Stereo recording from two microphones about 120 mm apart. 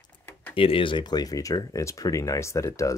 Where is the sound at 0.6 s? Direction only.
50° left (ahead or behind).